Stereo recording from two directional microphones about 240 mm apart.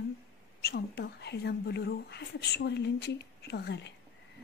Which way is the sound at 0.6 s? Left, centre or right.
Left.